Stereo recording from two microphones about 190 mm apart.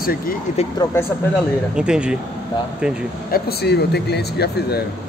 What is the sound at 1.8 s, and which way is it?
Speech, 5° right (ahead or behind).